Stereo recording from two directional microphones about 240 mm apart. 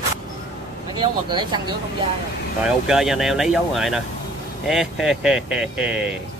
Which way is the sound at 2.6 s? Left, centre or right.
Centre.